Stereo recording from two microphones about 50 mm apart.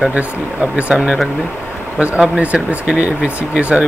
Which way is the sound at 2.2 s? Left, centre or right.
Right.